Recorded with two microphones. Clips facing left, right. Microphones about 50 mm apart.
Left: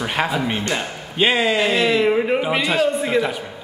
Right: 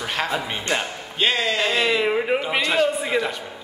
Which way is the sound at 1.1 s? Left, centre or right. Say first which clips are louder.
Left 4 dB; centre.